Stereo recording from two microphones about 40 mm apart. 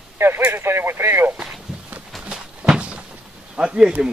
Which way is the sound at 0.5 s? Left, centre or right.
Right.